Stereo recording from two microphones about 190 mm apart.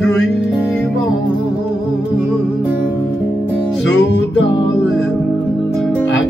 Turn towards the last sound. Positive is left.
turn(degrees=70)  # may be behind; listen again after turning